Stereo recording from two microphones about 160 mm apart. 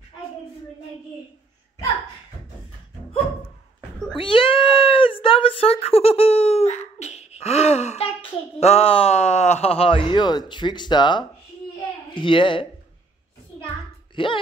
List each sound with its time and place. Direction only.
4.2 s a sound: 35° left (ahead or behind)
12.1 s speech: 30° left (ahead or behind)
14.1 s speech: 30° left (ahead or behind)